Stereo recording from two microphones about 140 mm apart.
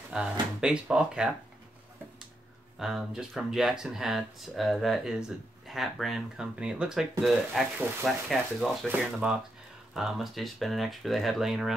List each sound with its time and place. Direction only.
0.1 s speech: 5° right (ahead or behind)
2.8 s speech: 5° right (ahead or behind)